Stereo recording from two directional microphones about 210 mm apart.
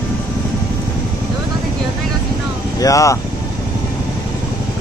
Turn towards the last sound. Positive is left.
turn(degrees=15)  # may be behind; listen again after turning